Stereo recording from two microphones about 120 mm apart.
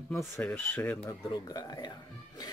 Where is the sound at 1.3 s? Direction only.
35° left (ahead or behind).